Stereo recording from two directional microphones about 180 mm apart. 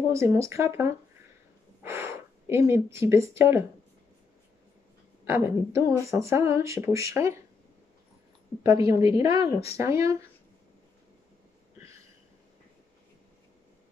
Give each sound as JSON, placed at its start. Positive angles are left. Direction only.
{"t": 0.1, "sound": "speech", "side_deg": -15}
{"t": 5.2, "sound": "speech", "side_deg": -15}
{"t": 8.6, "sound": "speech", "side_deg": -20}